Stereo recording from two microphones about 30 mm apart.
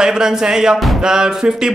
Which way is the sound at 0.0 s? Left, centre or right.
Right.